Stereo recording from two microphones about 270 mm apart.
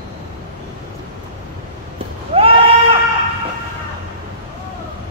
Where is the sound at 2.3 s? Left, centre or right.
Right.